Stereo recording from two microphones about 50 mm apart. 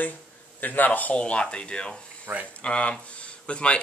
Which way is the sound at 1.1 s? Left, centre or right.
Left.